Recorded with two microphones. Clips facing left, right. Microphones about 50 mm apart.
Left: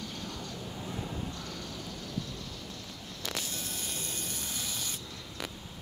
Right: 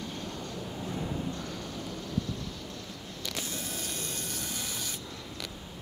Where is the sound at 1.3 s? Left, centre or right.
Right.